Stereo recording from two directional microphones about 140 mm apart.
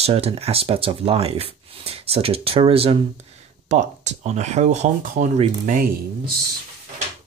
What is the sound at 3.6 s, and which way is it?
Speech, 55° right (ahead or behind).